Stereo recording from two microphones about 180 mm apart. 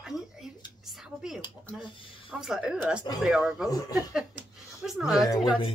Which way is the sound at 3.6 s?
20° left (ahead or behind).